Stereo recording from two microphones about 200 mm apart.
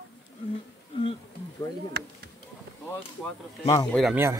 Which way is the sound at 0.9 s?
25° left (ahead or behind).